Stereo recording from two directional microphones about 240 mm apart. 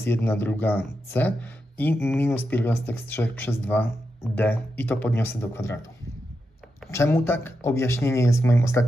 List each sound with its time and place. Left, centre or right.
0.0 s speech: centre
6.9 s speech: centre